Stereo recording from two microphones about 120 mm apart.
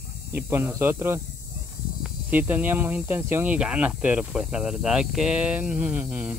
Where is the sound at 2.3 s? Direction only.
15° right (ahead or behind).